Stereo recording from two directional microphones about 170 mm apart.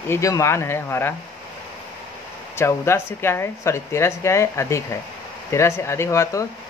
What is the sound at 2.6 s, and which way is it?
Speech, 15° left (ahead or behind).